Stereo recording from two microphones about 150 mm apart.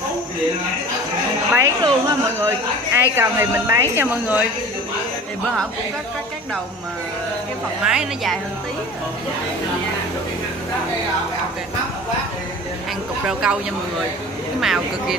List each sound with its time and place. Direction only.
1.6 s a woman's voice: 25° right (ahead or behind)
7.8 s a woman's voice: 5° right (ahead or behind)
13.3 s a woman's voice: 5° right (ahead or behind)
14.6 s a woman's voice: centre (ahead or behind)